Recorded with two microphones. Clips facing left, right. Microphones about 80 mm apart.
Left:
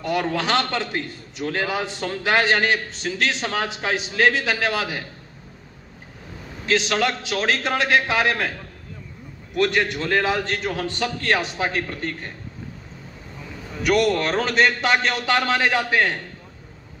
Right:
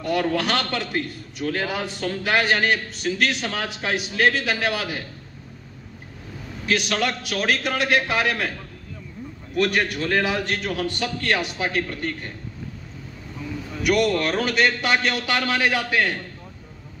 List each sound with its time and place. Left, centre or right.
0.0 s a man's voice: left
6.6 s a man's voice: left
9.6 s a man's voice: left
13.7 s a man's voice: left